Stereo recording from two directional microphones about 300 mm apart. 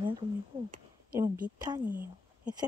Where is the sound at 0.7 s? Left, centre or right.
Right.